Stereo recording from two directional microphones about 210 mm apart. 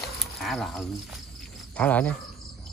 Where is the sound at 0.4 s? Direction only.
Centre (ahead or behind).